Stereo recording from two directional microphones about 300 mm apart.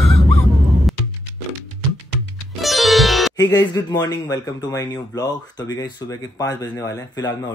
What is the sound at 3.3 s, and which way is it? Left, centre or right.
Speech, centre.